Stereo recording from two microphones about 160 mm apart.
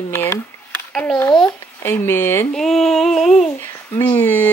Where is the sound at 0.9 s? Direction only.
5° left (ahead or behind).